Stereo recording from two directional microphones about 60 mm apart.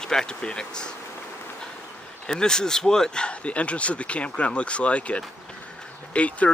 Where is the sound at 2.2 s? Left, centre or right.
Centre.